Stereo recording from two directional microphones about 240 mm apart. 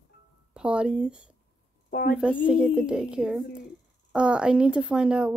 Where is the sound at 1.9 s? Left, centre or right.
Left.